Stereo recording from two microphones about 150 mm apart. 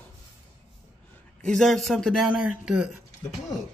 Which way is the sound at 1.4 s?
Centre (ahead or behind).